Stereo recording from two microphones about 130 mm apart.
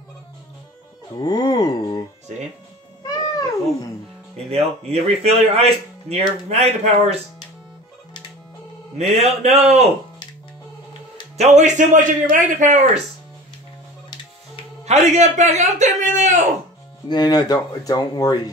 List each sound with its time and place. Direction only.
1.2 s speech: 30° left (ahead or behind)
4.5 s speech: 50° right (ahead or behind)
8.9 s speech: 60° right (ahead or behind)
11.3 s a man's voice: 65° right (ahead or behind)
14.9 s speech: 60° right (ahead or behind)
17.1 s speech: 30° left (ahead or behind)